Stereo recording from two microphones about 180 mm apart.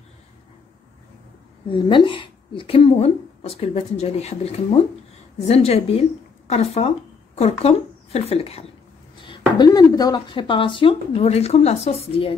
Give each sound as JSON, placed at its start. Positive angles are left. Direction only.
{"t": 1.7, "sound": "speech", "side_deg": 25}
{"t": 9.6, "sound": "speech", "side_deg": 20}